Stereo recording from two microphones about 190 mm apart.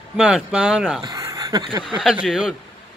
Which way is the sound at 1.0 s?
20° right (ahead or behind).